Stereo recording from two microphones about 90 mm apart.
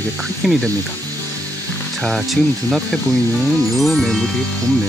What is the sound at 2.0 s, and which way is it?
Speech, centre (ahead or behind).